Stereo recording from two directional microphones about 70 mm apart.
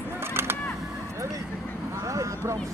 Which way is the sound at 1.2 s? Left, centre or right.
Right.